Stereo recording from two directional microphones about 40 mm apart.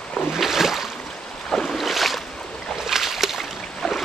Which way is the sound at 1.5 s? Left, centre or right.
Centre.